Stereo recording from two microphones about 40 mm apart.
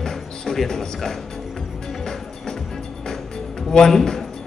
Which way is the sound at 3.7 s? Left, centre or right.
Centre.